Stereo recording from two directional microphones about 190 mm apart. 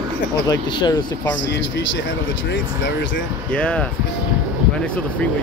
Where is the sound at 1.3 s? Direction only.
75° left (ahead or behind).